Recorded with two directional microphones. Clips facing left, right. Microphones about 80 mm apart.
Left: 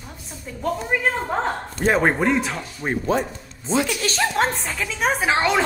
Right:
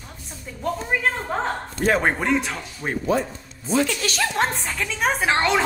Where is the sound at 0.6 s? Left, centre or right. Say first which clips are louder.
Left 1 dB; centre.